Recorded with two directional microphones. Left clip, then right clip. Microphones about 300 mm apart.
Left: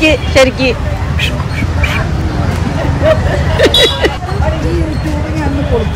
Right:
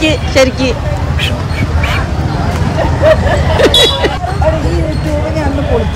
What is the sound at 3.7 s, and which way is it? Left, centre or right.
Speech, right.